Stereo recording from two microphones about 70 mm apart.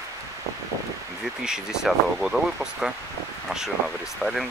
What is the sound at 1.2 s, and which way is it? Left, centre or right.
Speech, centre.